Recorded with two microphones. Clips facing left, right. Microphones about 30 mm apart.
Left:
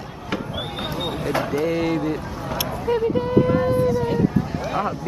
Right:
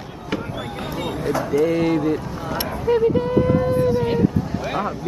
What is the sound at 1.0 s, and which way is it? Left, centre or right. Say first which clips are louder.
Speech: right 1 dB; left.